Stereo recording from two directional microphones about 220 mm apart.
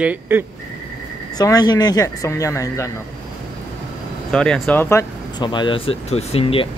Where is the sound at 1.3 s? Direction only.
15° left (ahead or behind).